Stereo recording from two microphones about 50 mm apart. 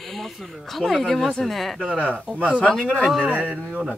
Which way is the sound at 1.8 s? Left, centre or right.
Right.